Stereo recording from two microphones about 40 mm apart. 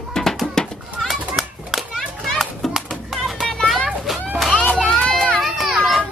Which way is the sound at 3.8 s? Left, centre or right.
Centre.